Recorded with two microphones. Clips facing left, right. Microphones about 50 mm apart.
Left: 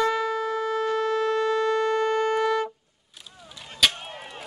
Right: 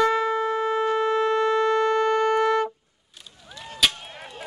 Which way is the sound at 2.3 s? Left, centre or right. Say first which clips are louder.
Right 2 dB; right.